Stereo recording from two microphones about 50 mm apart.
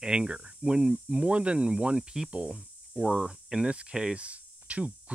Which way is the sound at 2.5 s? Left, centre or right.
Centre.